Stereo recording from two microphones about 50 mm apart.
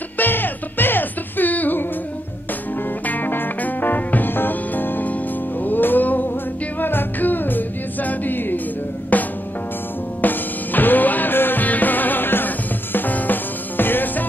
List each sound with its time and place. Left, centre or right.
0.2 s music: left
3.1 s music: left